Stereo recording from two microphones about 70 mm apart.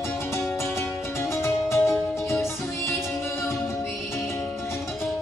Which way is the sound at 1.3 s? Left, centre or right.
Left.